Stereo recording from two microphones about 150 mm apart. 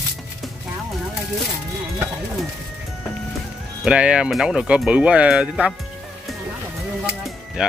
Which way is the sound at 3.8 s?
5° right (ahead or behind).